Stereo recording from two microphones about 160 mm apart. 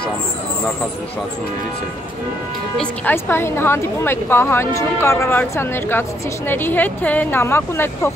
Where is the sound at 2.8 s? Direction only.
10° left (ahead or behind).